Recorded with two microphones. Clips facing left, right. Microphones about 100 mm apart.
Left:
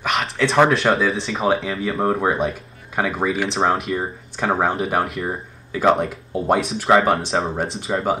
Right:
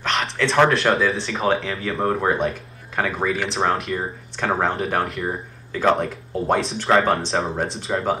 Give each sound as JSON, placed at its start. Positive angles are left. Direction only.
{"t": 0.0, "sound": "speech", "side_deg": 0}